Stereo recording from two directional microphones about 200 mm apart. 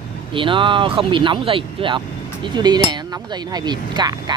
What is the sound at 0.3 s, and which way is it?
Speech, 25° right (ahead or behind).